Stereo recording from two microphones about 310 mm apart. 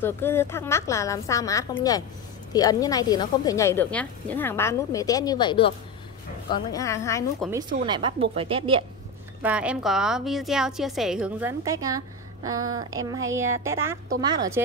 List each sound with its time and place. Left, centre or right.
0.0 s a woman's voice: centre
7.8 s a woman's voice: centre
9.4 s a woman's voice: centre